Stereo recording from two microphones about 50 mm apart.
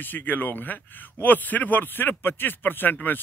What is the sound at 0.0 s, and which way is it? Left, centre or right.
A man's voice, left.